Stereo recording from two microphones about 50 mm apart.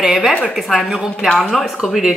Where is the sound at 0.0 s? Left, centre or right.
Centre.